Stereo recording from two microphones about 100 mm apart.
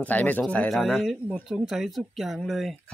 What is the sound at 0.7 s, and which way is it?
Speech, centre (ahead or behind).